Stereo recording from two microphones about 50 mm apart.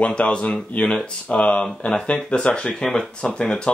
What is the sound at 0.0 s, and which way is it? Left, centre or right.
Speech, left.